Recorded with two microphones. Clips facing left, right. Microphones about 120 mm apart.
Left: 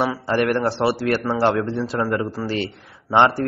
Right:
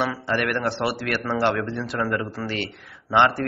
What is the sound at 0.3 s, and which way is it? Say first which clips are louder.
A man's voice: left 6 dB; 30° left (ahead or behind).